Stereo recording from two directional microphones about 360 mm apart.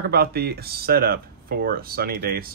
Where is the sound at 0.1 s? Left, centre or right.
Right.